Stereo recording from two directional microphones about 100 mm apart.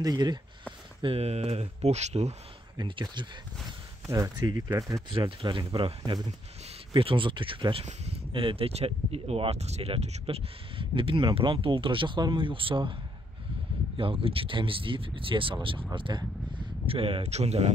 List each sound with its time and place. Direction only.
0.0 s speech: 45° right (ahead or behind)
1.0 s speech: 85° right
2.8 s speech: 50° right (ahead or behind)
4.4 s speech: 40° right (ahead or behind)
5.1 s speech: 55° right (ahead or behind); by 8.2 s 80° right
8.3 s speech: 60° right (ahead or behind)
13.9 s speech: 65° right (ahead or behind); by 17.7 s 90° right